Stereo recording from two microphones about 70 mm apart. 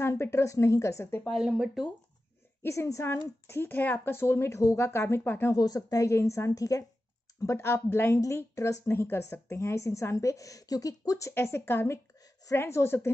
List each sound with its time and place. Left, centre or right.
0.0 s a woman's voice: left
1.4 s speech: centre
2.6 s speech: left
5.5 s a woman's voice: left
5.8 s a woman's voice: left
7.5 s speech: left
8.4 s a woman's voice: left
8.9 s a woman's voice: left
11.3 s speech: left